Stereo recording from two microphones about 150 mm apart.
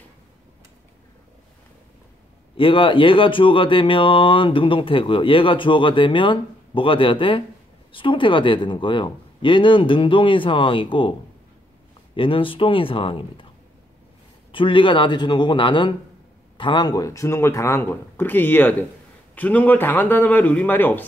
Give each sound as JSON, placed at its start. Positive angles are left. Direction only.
{"t": 2.5, "sound": "speech", "side_deg": 35}
{"t": 12.2, "sound": "speech", "side_deg": 35}
{"t": 14.5, "sound": "speech", "side_deg": 35}